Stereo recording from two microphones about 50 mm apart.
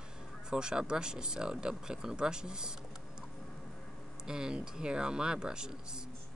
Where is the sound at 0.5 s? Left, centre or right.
Centre.